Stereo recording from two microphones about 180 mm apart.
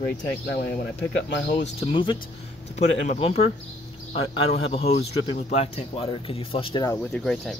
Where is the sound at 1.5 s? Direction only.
30° left (ahead or behind).